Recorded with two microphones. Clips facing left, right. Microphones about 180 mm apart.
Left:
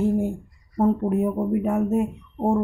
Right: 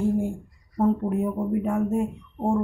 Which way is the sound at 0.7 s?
20° left (ahead or behind).